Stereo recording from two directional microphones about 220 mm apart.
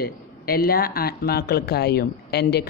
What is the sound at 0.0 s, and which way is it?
Speech, 45° left (ahead or behind).